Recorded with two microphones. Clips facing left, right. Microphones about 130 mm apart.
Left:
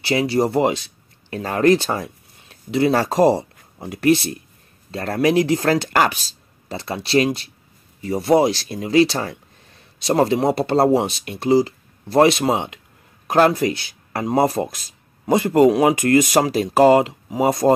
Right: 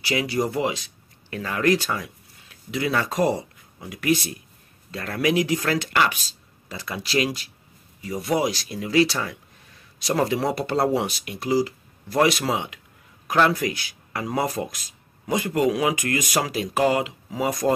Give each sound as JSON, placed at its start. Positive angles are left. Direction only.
{"t": 0.0, "sound": "speech", "side_deg": 30}